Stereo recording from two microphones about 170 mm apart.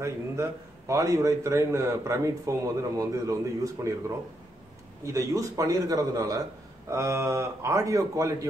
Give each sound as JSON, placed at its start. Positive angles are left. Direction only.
{"t": 0.0, "sound": "a man's voice", "side_deg": -15}
{"t": 5.0, "sound": "a man's voice", "side_deg": -20}